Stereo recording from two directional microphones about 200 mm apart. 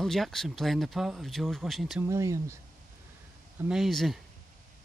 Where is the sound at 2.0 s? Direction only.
15° right (ahead or behind).